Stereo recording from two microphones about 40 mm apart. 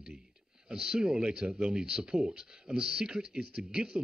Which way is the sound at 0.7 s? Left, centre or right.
Centre.